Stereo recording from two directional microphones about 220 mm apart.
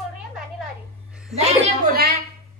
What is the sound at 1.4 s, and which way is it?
Speech, 40° right (ahead or behind).